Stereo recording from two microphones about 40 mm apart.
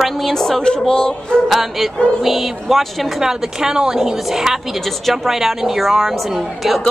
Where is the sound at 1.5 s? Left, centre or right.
Centre.